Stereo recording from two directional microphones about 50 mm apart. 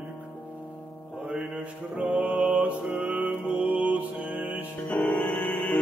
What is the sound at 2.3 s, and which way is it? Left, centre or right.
Mantra, right.